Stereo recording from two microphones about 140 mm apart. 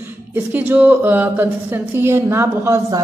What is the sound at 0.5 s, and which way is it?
Speech, 10° right (ahead or behind).